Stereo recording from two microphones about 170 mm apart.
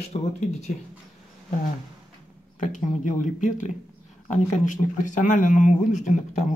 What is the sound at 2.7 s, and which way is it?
Speech, 45° left (ahead or behind).